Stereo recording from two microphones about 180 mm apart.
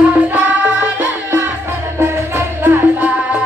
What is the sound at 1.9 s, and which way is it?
Music, 10° right (ahead or behind).